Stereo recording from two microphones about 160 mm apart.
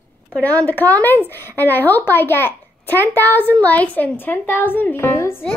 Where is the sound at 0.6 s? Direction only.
10° left (ahead or behind).